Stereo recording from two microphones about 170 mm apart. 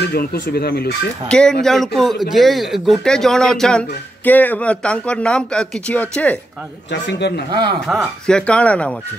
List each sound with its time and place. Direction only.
0.1 s speech: 65° left (ahead or behind)
1.3 s speech: 5° left (ahead or behind)
6.9 s a man's voice: 90° left
7.8 s speech: centre (ahead or behind)